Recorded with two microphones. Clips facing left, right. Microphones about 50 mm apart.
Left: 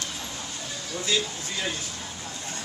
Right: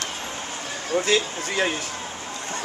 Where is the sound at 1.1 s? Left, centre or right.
Right.